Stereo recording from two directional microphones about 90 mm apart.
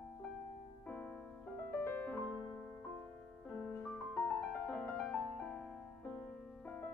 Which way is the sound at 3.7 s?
5° left (ahead or behind).